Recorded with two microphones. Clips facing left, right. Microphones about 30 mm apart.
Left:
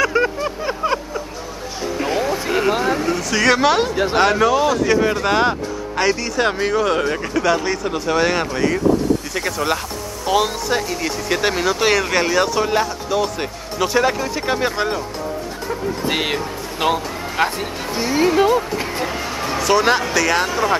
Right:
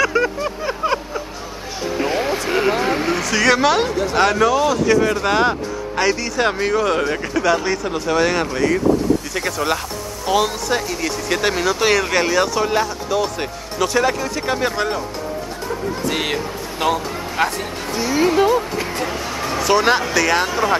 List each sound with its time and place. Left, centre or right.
0.0 s vehicle: centre
2.0 s a sound: centre
2.4 s vehicle: centre
2.8 s vehicle: right
3.3 s speech: centre
3.9 s speech: left
4.2 s speech: centre
16.2 s speech: centre
18.2 s speech: centre